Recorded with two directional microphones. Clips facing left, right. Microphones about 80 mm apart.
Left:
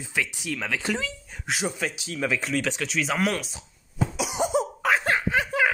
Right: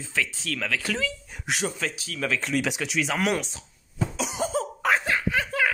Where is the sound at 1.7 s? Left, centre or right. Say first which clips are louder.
Left 1 dB; centre.